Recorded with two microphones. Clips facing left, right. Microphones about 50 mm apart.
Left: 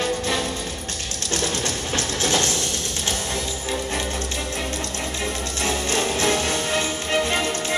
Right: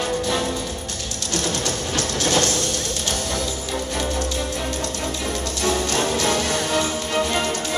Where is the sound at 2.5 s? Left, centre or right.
Left.